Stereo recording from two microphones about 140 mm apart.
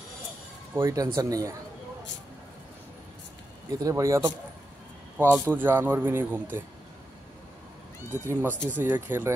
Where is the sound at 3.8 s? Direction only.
20° right (ahead or behind).